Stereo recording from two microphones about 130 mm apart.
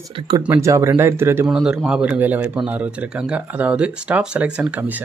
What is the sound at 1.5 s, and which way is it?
Speech, 5° right (ahead or behind).